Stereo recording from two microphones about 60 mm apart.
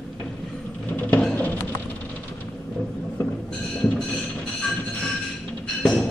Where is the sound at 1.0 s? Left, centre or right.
Left.